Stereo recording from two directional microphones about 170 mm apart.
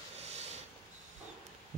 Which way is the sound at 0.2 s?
40° right (ahead or behind).